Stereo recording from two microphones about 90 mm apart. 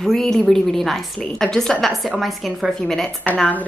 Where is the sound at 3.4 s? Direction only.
15° left (ahead or behind).